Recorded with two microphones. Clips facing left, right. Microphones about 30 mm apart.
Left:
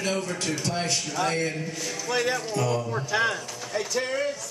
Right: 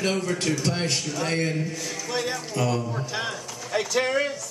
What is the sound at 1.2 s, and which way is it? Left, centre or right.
Speech, right.